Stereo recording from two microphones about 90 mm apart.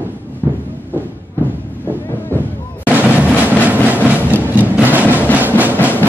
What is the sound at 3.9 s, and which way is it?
Train, 20° right (ahead or behind).